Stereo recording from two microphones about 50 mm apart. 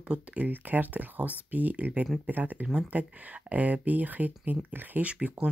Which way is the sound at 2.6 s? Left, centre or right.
Right.